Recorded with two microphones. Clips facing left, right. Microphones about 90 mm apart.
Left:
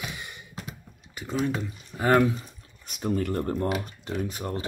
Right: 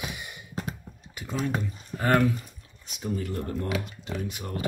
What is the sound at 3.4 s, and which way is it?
Speech, 35° left (ahead or behind).